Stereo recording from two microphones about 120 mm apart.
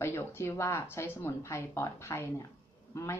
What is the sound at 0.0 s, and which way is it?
A woman's voice, 20° left (ahead or behind).